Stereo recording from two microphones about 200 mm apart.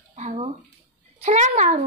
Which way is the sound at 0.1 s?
35° right (ahead or behind).